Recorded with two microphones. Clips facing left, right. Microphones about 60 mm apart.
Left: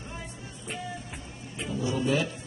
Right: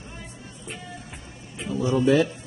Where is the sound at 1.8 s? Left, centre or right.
Right.